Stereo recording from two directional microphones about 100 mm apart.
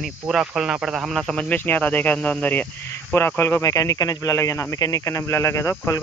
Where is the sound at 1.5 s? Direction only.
20° left (ahead or behind).